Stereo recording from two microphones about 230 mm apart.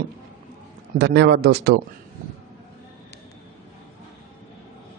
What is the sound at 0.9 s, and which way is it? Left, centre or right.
Speech, right.